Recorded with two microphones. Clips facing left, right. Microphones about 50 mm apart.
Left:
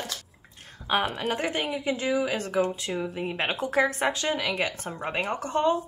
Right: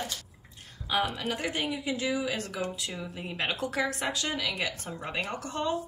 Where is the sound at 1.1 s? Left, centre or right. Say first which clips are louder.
Left 4 dB; left.